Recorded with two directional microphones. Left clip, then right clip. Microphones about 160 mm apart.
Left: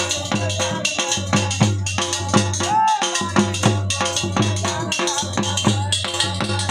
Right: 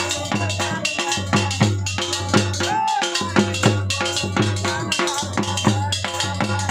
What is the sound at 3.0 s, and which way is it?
Music, 40° left (ahead or behind).